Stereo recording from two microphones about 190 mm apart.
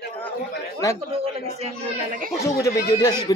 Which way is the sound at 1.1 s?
30° right (ahead or behind).